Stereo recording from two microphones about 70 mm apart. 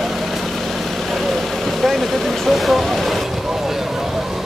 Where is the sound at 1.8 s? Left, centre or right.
Centre.